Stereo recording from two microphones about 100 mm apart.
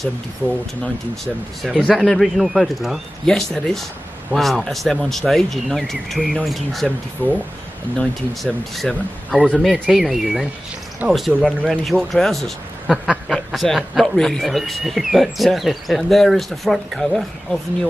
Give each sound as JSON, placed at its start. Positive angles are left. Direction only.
{"t": 1.2, "sound": "speech", "side_deg": 0}
{"t": 7.2, "sound": "speech", "side_deg": 20}
{"t": 8.0, "sound": "speech", "side_deg": 5}